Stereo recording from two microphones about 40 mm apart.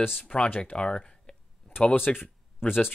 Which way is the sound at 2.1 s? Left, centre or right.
Left.